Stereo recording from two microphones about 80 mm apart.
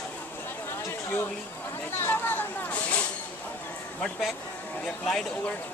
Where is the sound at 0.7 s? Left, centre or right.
Left.